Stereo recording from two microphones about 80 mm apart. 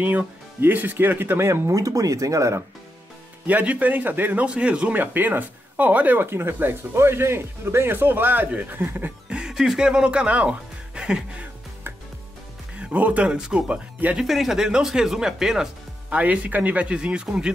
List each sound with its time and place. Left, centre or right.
0.0 s a man's voice: right
3.4 s a man's voice: centre
9.3 s speech: centre
12.7 s speech: centre
14.2 s speech: centre
16.1 s speech: centre